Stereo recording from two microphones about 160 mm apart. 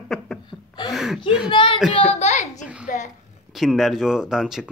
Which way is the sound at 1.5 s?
30° left (ahead or behind).